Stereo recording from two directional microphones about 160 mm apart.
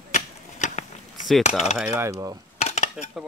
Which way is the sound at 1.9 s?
20° right (ahead or behind).